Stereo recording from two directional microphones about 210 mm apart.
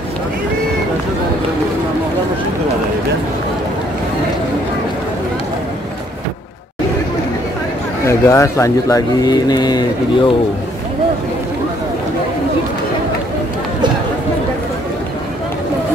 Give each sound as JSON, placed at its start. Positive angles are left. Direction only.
{"t": 8.1, "sound": "speech", "side_deg": 15}